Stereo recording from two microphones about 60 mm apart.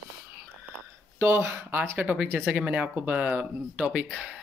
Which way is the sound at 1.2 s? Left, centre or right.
Right.